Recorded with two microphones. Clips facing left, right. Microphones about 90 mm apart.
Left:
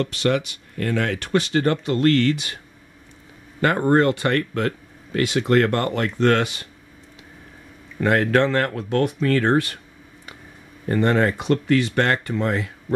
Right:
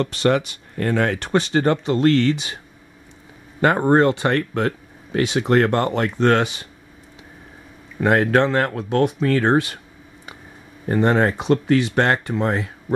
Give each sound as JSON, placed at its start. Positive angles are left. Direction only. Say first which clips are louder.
{"t": 0.0, "sound": "speech", "louder": "right 3 dB", "side_deg": -35}
{"t": 3.6, "sound": "speech", "louder": "right 2 dB", "side_deg": -20}
{"t": 8.0, "sound": "speech", "louder": "right 2 dB", "side_deg": -20}
{"t": 10.9, "sound": "speech", "louder": "right 1 dB", "side_deg": -20}